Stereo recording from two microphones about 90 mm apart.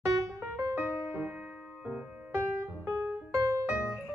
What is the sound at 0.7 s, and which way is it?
Music, 25° right (ahead or behind).